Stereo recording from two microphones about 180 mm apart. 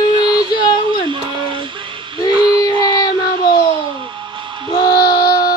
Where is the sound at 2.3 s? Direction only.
30° right (ahead or behind).